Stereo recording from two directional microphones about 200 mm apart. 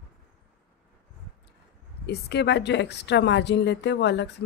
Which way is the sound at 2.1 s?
55° left (ahead or behind).